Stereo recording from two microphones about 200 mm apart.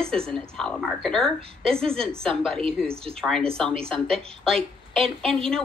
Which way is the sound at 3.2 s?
5° left (ahead or behind).